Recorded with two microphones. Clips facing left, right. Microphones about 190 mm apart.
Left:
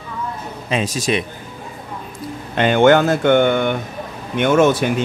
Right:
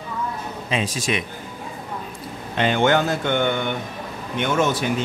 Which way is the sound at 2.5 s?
55° left (ahead or behind).